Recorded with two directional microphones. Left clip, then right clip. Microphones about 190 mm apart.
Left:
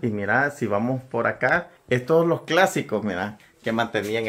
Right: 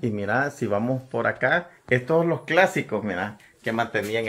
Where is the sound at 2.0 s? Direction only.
15° left (ahead or behind).